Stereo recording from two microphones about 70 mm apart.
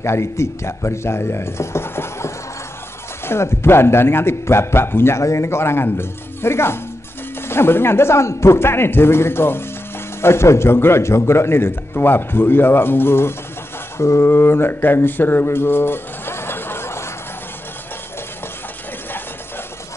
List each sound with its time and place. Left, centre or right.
0.0 s a man's voice: left